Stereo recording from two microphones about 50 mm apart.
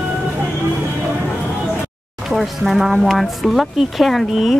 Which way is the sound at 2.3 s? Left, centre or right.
Centre.